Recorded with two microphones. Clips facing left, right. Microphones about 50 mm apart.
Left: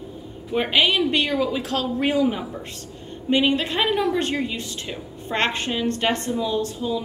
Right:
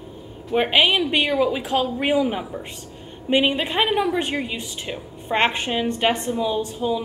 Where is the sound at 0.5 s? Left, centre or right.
Centre.